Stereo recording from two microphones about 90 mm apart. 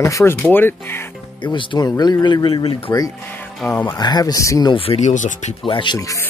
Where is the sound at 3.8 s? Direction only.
50° left (ahead or behind).